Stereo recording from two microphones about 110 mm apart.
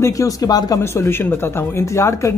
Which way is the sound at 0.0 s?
30° left (ahead or behind).